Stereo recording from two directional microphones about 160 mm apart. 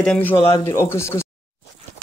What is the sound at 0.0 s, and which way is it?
Speech, 10° left (ahead or behind).